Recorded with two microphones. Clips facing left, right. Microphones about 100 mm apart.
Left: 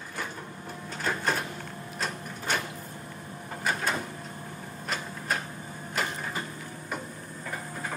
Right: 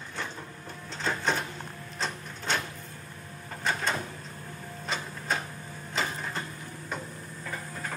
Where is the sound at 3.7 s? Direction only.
5° left (ahead or behind).